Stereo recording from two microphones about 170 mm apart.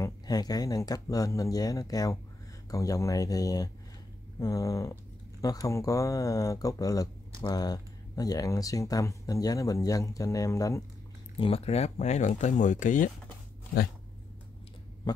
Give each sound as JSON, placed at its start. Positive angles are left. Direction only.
{"t": 0.0, "sound": "speech", "side_deg": 25}
{"t": 11.3, "sound": "speech", "side_deg": 35}